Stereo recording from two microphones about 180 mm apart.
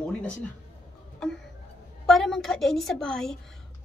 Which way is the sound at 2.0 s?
Centre (ahead or behind).